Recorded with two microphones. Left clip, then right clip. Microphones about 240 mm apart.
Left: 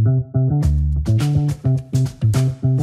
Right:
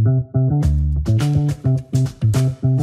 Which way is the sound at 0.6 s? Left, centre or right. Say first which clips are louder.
Right 1 dB; left.